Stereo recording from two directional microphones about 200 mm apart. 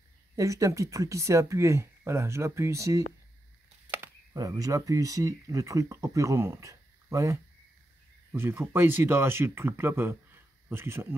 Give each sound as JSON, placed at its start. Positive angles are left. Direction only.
{"t": 0.4, "sound": "speech", "side_deg": -15}